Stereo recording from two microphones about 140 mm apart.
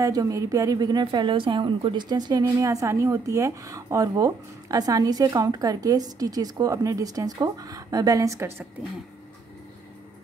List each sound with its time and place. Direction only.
0.0 s a woman's voice: 25° right (ahead or behind)